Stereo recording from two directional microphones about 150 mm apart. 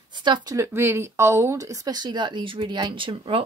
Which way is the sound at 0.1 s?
30° right (ahead or behind).